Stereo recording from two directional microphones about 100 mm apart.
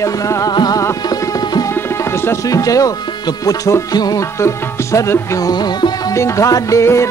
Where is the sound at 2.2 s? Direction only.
35° left (ahead or behind).